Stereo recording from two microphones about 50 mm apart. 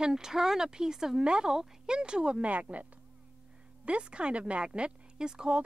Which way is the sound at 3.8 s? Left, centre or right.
Right.